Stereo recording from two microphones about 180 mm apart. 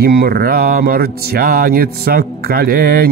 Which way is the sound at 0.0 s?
60° right (ahead or behind).